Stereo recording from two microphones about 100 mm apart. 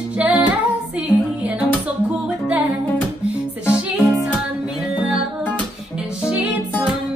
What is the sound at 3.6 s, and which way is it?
Music, 15° right (ahead or behind).